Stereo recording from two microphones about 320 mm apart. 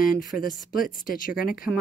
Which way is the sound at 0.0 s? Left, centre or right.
Left.